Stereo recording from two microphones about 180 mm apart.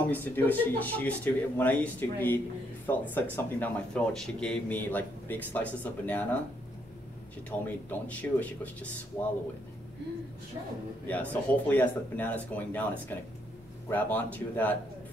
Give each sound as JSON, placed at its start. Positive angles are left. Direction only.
{"t": 0.0, "sound": "a man's voice", "side_deg": 10}
{"t": 7.6, "sound": "a man's voice", "side_deg": 10}
{"t": 11.1, "sound": "a man's voice", "side_deg": 10}